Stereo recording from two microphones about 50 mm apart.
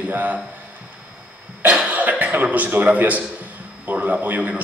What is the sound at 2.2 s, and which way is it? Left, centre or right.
A man's voice, right.